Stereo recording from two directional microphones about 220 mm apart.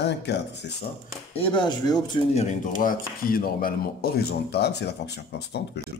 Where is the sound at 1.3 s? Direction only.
25° left (ahead or behind); by 5.6 s 50° left (ahead or behind).